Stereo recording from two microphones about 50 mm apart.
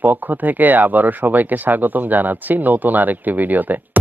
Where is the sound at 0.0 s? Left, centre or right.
Right.